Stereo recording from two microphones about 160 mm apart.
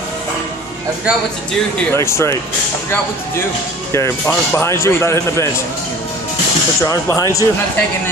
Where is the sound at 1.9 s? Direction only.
15° left (ahead or behind).